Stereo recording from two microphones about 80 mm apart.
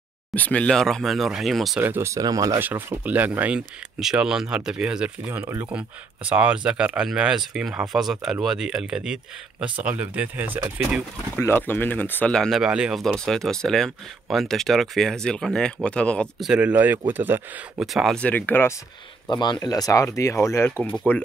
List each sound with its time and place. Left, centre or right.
0.3 s speech: centre
1.8 s speech: right
2.0 s speech: right
2.6 s speech: right
11.3 s speech: left
12.3 s speech: centre
13.0 s speech: centre
16.3 s speech: centre
16.6 s speech: right
17.7 s speech: centre
18.1 s speech: centre
19.2 s speech: left
21.1 s speech: left